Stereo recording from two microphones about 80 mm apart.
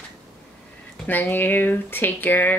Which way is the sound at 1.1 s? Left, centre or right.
Left.